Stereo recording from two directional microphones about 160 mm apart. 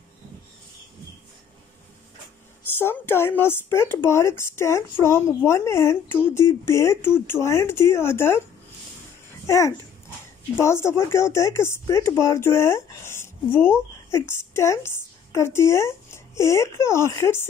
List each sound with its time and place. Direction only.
2.8 s speech: 15° left (ahead or behind)
9.5 s speech: 20° left (ahead or behind)